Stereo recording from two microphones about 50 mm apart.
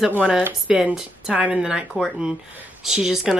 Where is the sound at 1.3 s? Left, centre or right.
Right.